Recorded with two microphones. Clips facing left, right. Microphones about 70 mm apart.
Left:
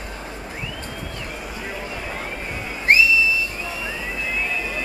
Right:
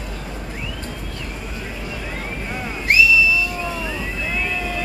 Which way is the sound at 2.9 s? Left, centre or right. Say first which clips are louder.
Right 1 dB; left.